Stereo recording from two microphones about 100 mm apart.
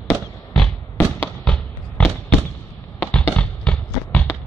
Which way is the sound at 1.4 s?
10° left (ahead or behind).